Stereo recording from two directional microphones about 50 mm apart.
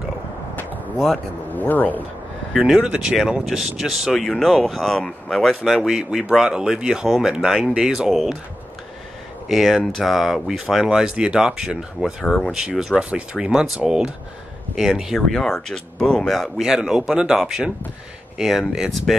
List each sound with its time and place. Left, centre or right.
0.9 s speech: centre
1.5 s speech: left
2.6 s speech: centre
5.6 s speech: centre
6.0 s speech: right
9.5 s speech: centre
10.9 s speech: centre
14.8 s speech: centre
16.5 s speech: centre